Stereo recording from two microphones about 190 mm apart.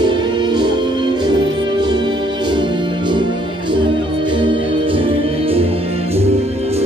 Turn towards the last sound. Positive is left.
turn(degrees=-30)  # may be behind; listen again after turning